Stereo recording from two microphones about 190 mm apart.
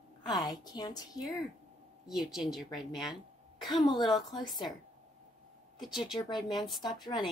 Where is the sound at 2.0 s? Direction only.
Centre (ahead or behind).